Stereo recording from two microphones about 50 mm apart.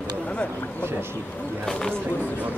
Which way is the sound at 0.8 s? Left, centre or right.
Right.